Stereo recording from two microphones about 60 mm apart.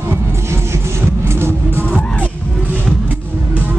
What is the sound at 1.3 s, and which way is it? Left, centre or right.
Music, right.